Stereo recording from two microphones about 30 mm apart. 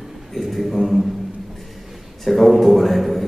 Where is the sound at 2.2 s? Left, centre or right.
Centre.